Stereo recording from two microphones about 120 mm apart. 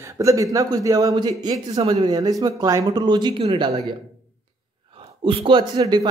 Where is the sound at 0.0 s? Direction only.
25° right (ahead or behind).